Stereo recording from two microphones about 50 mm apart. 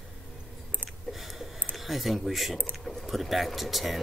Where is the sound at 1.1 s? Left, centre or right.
Centre.